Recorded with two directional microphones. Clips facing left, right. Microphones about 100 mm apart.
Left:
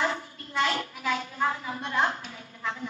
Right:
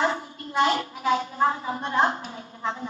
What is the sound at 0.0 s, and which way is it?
A woman's voice, 30° right (ahead or behind).